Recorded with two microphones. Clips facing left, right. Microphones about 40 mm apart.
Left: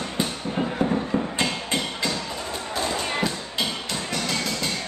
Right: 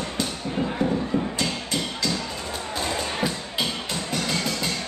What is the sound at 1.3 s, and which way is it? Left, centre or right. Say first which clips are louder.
Music: left 2 dB; left.